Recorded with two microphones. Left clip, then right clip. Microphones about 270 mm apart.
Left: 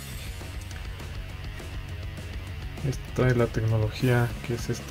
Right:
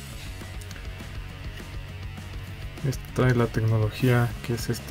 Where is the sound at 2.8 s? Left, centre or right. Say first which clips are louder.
Right 1 dB; centre.